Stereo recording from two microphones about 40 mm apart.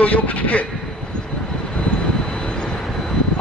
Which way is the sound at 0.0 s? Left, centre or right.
Left.